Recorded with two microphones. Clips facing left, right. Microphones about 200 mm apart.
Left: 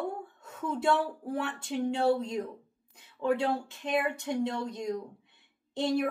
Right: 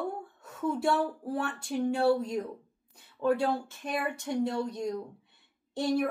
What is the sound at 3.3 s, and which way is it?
Speech, 20° left (ahead or behind).